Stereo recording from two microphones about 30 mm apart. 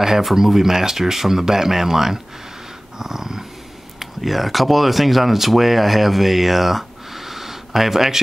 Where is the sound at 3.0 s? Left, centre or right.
Centre.